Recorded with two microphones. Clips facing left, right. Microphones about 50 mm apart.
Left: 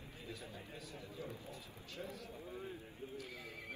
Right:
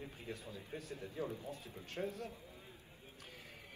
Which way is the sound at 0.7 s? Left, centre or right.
Right.